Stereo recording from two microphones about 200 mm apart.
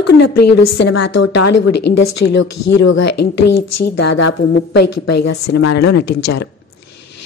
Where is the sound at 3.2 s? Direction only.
60° left (ahead or behind); by 5.7 s 75° left (ahead or behind).